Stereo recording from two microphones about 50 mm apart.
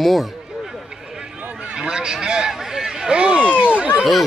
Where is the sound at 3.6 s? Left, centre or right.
Right.